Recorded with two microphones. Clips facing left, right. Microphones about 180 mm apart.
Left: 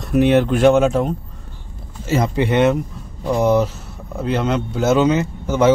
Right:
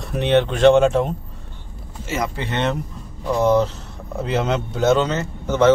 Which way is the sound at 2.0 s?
30° left (ahead or behind).